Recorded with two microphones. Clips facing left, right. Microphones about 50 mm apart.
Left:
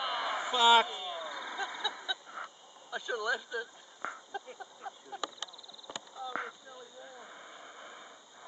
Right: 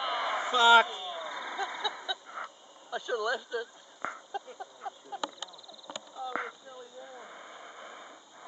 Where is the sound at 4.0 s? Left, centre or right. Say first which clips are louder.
Right 3 dB; centre.